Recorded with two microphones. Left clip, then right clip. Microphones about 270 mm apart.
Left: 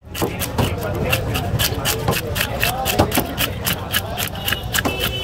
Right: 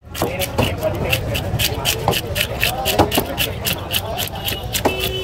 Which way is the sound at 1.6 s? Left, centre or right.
Left.